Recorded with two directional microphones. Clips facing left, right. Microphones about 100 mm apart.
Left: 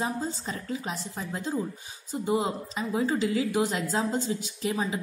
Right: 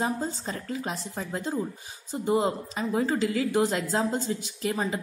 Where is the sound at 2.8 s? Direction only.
25° right (ahead or behind).